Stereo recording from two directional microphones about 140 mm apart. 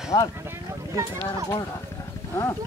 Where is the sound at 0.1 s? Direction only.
30° left (ahead or behind).